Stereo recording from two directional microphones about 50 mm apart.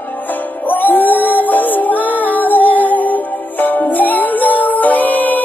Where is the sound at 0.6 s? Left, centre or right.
Left.